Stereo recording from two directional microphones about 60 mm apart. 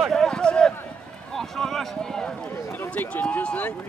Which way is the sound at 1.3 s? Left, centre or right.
Centre.